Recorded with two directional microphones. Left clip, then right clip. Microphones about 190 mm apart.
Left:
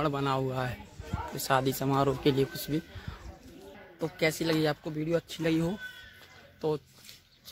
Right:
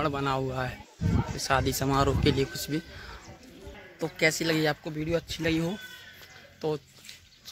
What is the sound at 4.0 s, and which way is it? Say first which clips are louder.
Speech: right 3 dB; 5° left (ahead or behind).